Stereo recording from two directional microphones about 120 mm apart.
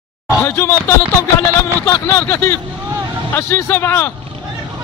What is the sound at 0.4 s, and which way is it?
A man's voice, 20° left (ahead or behind).